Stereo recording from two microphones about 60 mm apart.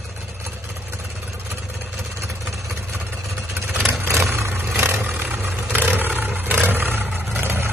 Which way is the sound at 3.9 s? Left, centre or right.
Right.